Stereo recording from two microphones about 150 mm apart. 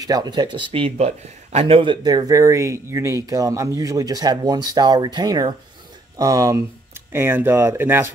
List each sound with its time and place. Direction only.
0.0 s speech: 25° right (ahead or behind); by 1.8 s 45° right (ahead or behind)
1.8 s speech: 30° right (ahead or behind); by 8.1 s 15° right (ahead or behind)